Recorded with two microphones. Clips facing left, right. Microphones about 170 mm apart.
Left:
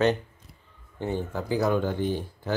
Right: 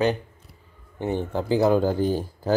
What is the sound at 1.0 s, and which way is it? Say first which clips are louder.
Speech: right 4 dB; 25° right (ahead or behind).